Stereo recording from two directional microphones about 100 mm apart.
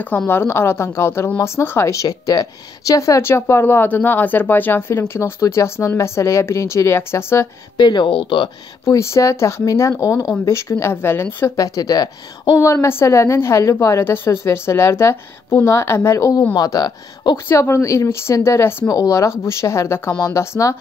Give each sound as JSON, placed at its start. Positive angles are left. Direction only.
{"t": 0.3, "sound": "speech", "side_deg": 25}
{"t": 7.7, "sound": "speech", "side_deg": 50}
{"t": 8.8, "sound": "speech", "side_deg": 30}
{"t": 11.5, "sound": "speech", "side_deg": 35}
{"t": 12.5, "sound": "speech", "side_deg": 25}
{"t": 17.5, "sound": "speech", "side_deg": 25}